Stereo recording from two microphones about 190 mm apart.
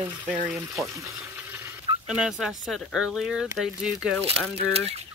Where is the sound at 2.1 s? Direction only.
5° right (ahead or behind).